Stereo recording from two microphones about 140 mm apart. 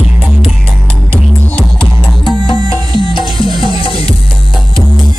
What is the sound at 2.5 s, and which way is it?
Music, 35° left (ahead or behind).